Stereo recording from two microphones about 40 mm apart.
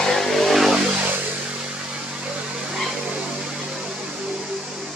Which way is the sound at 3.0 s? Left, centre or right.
Right.